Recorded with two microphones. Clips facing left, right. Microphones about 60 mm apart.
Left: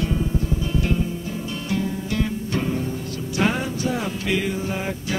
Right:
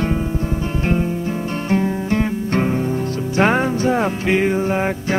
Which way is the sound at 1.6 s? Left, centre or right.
Right.